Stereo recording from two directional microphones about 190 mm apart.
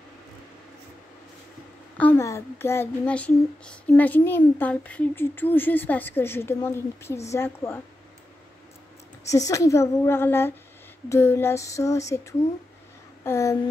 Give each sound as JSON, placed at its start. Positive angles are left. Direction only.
{"t": 2.0, "sound": "a child's voice", "side_deg": 10}
{"t": 9.3, "sound": "a child's voice", "side_deg": 15}
{"t": 13.2, "sound": "a child's voice", "side_deg": 15}